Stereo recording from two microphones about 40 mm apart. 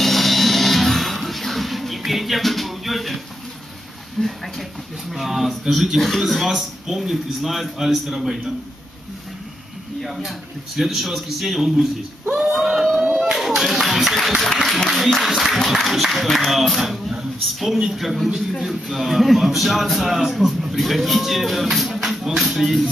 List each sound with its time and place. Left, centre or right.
0.0 s music: centre
4.2 s speech: centre
5.1 s speech: centre
10.0 s speech: centre
12.9 s a sound: centre
14.6 s speech: centre